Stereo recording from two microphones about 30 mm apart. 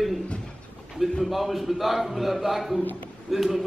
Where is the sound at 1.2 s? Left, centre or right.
Centre.